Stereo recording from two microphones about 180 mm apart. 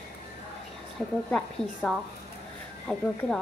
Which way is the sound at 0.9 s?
Centre (ahead or behind).